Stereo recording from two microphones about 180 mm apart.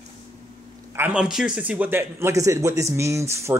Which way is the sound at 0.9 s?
10° right (ahead or behind).